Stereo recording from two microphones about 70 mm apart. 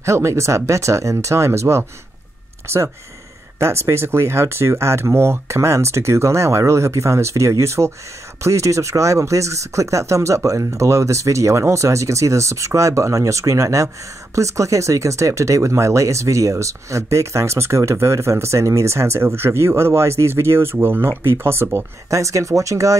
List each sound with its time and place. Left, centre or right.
0.0 s speech: right